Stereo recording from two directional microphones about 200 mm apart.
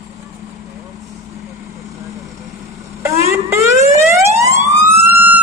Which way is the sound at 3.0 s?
15° right (ahead or behind).